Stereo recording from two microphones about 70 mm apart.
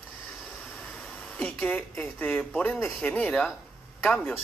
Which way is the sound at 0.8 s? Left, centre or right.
Centre.